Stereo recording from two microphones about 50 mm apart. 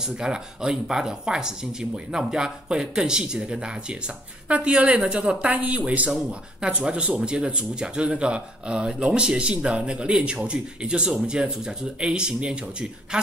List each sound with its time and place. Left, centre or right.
0.0 s speech: centre
5.4 s speech: right